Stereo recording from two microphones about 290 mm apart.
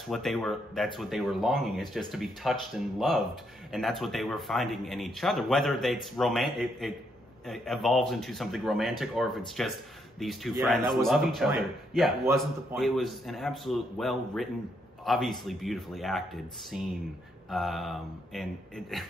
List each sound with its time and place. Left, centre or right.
0.1 s a man's voice: centre